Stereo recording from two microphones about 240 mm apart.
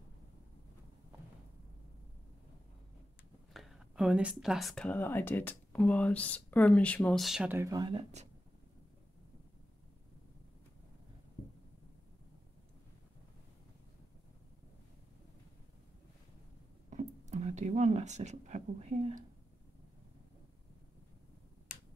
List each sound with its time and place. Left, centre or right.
3.5 s speech: centre; by 8.3 s right
16.9 s speech: right